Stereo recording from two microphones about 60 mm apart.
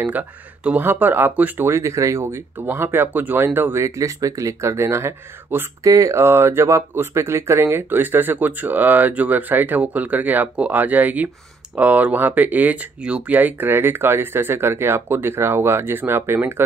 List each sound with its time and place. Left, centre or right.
0.0 s speech: right
1.7 s speech: right
2.6 s speech: right
3.7 s speech: right
5.9 s speech: right
6.1 s speech: right
13.0 s speech: centre
13.4 s speech: right